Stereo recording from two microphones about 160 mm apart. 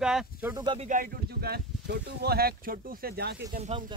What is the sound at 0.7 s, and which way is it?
Speech, 55° right (ahead or behind).